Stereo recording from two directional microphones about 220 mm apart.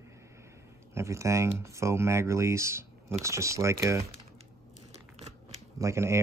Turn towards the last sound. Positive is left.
turn(degrees=-10)  # may be behind; listen again after turning